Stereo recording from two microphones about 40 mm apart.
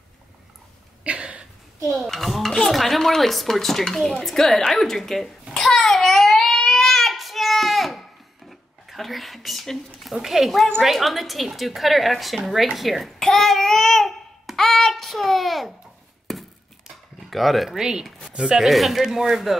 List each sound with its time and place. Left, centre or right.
1.0 s a sound: right
2.1 s a woman's voice: centre
4.7 s babbling: centre
8.5 s a sound: centre
9.9 s a woman's voice: centre
12.7 s child singing: centre
14.6 s a sound: centre
17.3 s speech: centre
17.6 s speech: centre
18.7 s a woman's voice: centre